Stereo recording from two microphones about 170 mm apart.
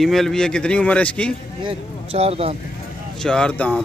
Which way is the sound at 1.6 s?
35° right (ahead or behind).